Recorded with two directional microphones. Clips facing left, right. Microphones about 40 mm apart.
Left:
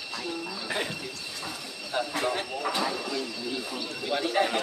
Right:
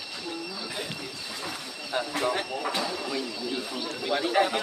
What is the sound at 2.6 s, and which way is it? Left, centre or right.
A man's voice, centre.